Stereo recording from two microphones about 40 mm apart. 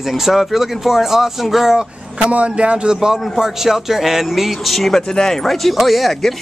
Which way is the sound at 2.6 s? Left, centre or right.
Right.